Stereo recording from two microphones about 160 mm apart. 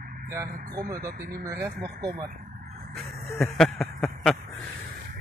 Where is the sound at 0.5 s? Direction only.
60° right (ahead or behind).